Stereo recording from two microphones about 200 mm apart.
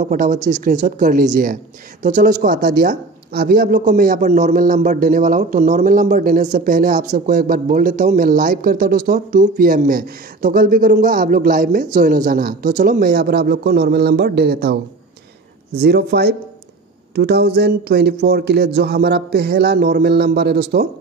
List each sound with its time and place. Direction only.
0.0 s a woman's voice: 40° right (ahead or behind)